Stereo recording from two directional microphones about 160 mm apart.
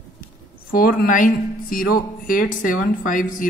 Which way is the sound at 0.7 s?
65° left (ahead or behind).